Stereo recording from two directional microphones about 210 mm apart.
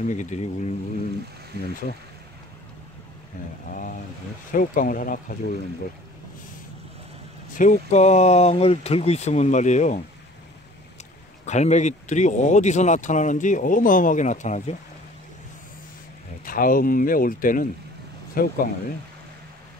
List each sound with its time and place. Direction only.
0.0 s speech: 35° left (ahead or behind)
3.7 s speech: 40° left (ahead or behind)
7.5 s speech: 35° left (ahead or behind)
11.4 s speech: 35° left (ahead or behind)
16.4 s speech: 40° left (ahead or behind)